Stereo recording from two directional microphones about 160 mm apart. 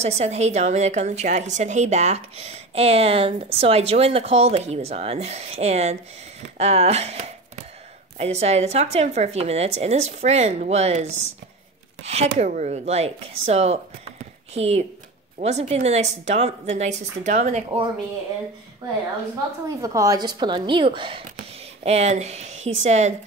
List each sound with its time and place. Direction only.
0.0 s a woman's voice: 45° right (ahead or behind)
19.8 s a woman's voice: 20° right (ahead or behind)
21.8 s a woman's voice: 45° right (ahead or behind)